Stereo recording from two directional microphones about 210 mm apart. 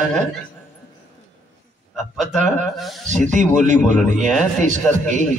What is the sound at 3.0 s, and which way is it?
A man's voice, 35° right (ahead or behind).